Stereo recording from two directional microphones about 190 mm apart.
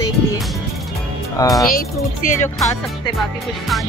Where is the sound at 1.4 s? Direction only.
20° left (ahead or behind).